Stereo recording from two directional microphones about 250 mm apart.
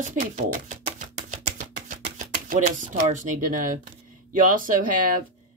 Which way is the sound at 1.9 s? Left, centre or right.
Right.